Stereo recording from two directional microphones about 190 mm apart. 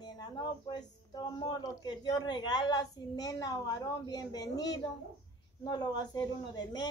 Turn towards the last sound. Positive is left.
turn(degrees=20)  # may be behind; listen again after turning